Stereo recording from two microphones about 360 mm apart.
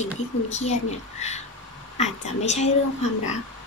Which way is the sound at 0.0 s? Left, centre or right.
Centre.